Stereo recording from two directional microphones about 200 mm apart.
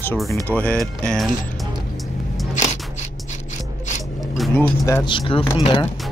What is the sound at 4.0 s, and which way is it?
Music, centre (ahead or behind).